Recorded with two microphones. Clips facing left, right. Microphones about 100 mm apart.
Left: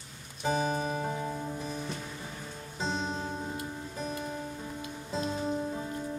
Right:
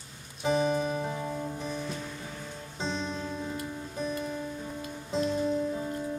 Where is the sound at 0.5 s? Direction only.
35° left (ahead or behind).